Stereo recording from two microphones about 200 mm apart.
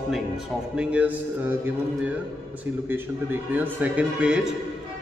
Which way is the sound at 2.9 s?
10° right (ahead or behind).